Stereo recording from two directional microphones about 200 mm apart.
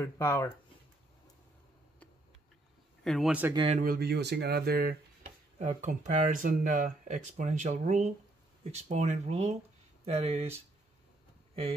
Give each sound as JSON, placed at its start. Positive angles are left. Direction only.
{"t": 0.0, "sound": "speech", "side_deg": 10}
{"t": 3.0, "sound": "speech", "side_deg": 0}
{"t": 3.5, "sound": "speech", "side_deg": -30}
{"t": 3.8, "sound": "speech", "side_deg": -50}
{"t": 5.6, "sound": "speech", "side_deg": -35}